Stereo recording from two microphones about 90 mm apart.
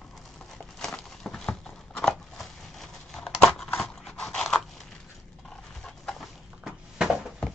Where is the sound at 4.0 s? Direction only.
5° left (ahead or behind).